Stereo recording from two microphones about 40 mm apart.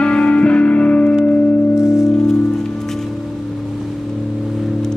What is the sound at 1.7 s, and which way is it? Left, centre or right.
Music, centre.